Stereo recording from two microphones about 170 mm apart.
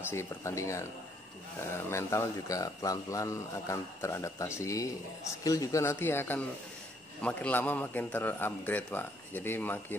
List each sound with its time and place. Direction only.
0.1 s speech: 15° left (ahead or behind)
1.9 s speech: 15° left (ahead or behind)